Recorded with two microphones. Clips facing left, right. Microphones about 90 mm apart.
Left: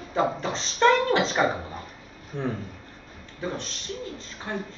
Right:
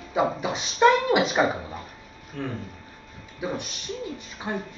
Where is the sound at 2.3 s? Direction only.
20° left (ahead or behind).